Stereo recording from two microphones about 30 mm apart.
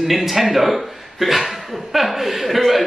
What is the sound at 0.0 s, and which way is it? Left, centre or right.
A man's voice, centre.